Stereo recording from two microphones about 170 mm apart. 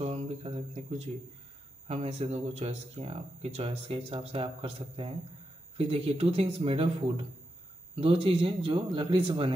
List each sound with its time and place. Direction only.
0.0 s speech: 40° right (ahead or behind)